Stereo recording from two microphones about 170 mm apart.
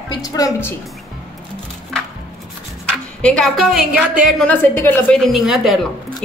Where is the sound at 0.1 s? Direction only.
20° left (ahead or behind).